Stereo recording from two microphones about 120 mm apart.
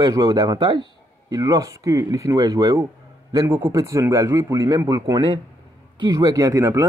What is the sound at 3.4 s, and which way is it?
Speech, 15° right (ahead or behind).